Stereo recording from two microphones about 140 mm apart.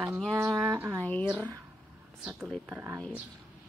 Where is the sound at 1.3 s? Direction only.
10° right (ahead or behind).